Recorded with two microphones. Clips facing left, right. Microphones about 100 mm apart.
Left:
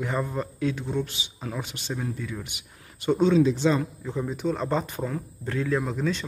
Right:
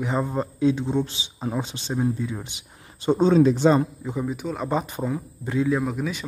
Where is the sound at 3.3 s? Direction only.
50° right (ahead or behind).